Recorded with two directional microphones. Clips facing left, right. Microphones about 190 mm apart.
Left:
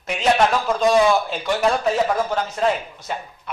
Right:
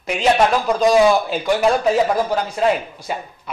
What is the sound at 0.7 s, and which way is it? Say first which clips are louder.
A man's voice: right 3 dB; centre (ahead or behind).